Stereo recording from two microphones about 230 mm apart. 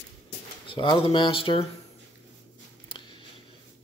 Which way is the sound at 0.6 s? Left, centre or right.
Centre.